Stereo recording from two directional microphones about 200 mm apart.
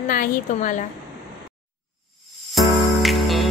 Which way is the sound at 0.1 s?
45° left (ahead or behind).